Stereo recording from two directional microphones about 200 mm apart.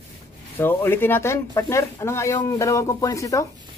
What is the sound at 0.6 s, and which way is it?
Speech, 10° left (ahead or behind).